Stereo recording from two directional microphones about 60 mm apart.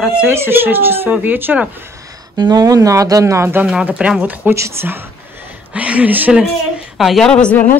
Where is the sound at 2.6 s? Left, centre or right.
Right.